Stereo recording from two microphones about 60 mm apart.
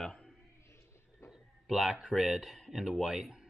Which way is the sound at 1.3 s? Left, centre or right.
Centre.